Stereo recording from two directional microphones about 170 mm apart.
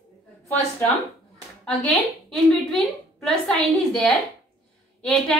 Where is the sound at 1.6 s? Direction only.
5° left (ahead or behind).